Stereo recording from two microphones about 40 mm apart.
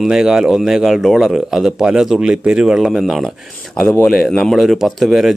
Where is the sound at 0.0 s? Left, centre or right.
Centre.